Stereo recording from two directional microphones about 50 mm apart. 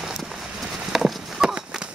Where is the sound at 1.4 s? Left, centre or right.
Centre.